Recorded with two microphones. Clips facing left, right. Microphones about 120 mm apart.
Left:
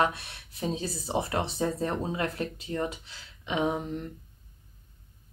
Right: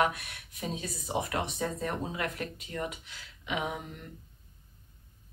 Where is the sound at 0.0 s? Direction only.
30° left (ahead or behind).